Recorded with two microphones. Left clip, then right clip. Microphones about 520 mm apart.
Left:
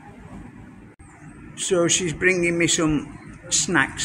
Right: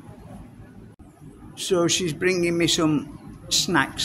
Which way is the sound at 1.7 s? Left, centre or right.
Right.